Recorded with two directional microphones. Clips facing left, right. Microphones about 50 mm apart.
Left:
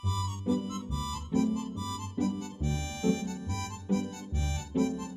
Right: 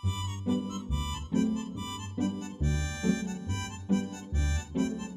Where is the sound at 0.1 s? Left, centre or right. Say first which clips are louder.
Left 1 dB; right.